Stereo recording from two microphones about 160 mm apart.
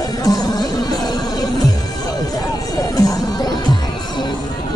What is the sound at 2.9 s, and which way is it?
Music, 25° left (ahead or behind).